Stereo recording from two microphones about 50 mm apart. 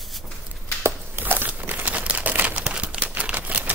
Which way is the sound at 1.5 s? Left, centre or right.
Right.